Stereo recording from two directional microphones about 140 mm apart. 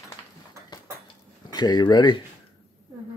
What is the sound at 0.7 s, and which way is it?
Dishes, 30° left (ahead or behind).